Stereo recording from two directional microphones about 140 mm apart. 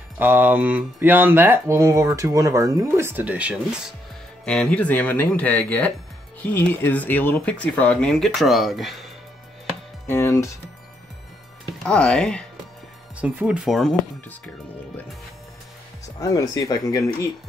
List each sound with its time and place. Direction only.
0.2 s speech: 15° right (ahead or behind)
4.5 s speech: 10° left (ahead or behind)
10.0 s speech: 20° left (ahead or behind)
11.8 s speech: 5° left (ahead or behind)
13.2 s speech: 5° right (ahead or behind)
16.2 s speech: 25° left (ahead or behind)